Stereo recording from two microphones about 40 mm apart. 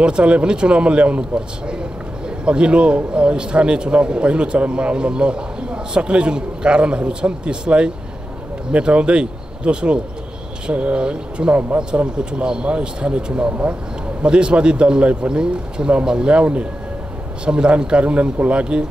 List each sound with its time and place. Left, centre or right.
0.0 s a man's voice: right
13.5 s speech: right
14.2 s a man's voice: right